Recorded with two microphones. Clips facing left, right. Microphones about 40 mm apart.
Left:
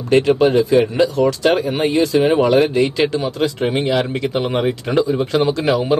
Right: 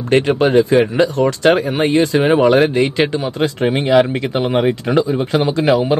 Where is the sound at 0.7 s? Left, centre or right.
Right.